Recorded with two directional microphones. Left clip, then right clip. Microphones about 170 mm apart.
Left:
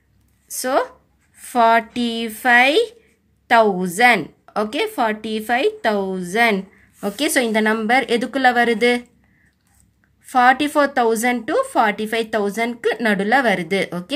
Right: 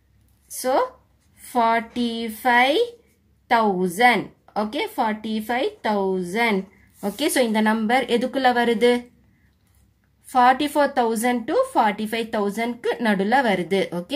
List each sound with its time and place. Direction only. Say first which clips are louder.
0.5 s a woman's voice: left 2 dB; 35° left (ahead or behind)
10.2 s a woman's voice: left 3 dB; 25° left (ahead or behind)